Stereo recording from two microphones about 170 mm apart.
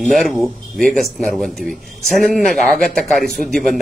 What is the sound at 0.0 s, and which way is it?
A man's voice, centre (ahead or behind).